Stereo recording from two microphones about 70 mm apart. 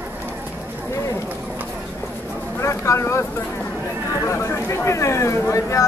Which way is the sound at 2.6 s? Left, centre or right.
Left.